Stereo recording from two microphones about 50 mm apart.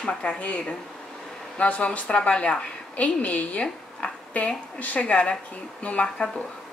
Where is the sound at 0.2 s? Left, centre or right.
Left.